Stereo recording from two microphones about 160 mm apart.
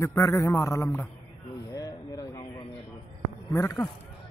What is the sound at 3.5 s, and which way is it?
Speech, 15° left (ahead or behind).